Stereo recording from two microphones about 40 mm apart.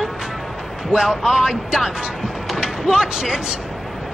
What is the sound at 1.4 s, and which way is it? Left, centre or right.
Speech, centre.